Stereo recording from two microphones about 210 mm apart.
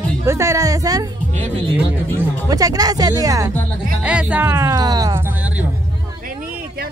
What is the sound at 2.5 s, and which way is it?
Speech, 15° right (ahead or behind).